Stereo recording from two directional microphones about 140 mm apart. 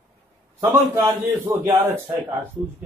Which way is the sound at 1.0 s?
25° right (ahead or behind).